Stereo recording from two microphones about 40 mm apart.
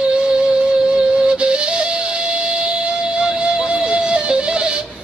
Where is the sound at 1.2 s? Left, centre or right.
Right.